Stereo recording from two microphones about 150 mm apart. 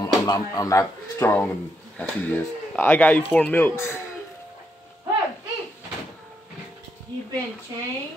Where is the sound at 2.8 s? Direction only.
10° left (ahead or behind).